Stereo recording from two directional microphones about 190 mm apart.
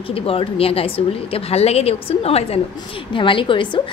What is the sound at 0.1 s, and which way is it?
A woman's voice, 30° left (ahead or behind).